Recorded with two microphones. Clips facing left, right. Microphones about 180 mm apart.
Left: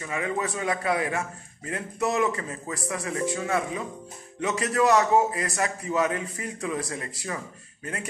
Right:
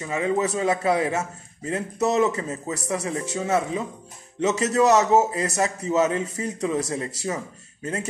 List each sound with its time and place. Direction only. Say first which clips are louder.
0.0 s a man's voice: right 5 dB; 25° right (ahead or behind)